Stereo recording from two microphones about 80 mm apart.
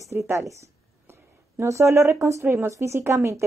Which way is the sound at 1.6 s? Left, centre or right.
Right.